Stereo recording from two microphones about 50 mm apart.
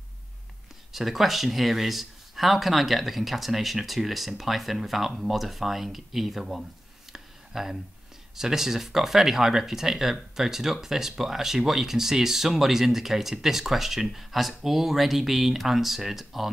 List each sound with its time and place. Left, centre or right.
0.9 s speech: centre
7.1 s a sound: centre
8.4 s speech: centre